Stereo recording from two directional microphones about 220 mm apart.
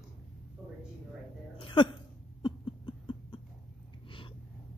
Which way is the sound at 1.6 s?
25° left (ahead or behind).